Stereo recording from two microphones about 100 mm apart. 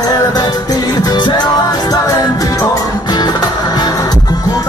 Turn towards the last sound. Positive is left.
turn(degrees=40)  # may be behind; listen again after turning